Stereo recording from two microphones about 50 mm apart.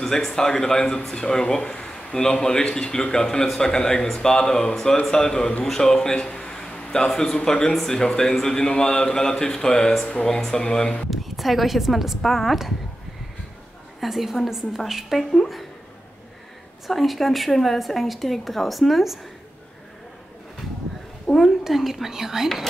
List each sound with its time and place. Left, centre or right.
0.0 s a man's voice: centre
11.1 s speech: centre
14.0 s speech: centre
16.8 s speech: centre
21.3 s speech: centre